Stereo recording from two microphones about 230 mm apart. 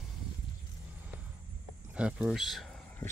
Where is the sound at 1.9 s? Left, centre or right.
Centre.